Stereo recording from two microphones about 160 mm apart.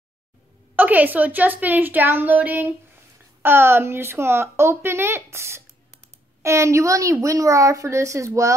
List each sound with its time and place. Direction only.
0.7 s a woman's voice: 10° right (ahead or behind)